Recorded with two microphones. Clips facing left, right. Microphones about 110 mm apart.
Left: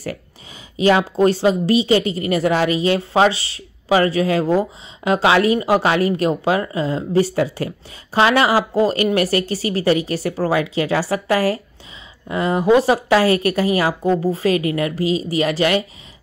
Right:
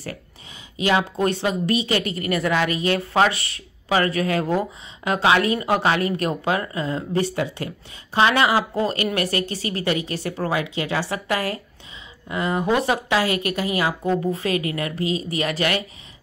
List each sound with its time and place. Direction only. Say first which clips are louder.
0.7 s a woman's voice: left 6 dB; 30° left (ahead or behind)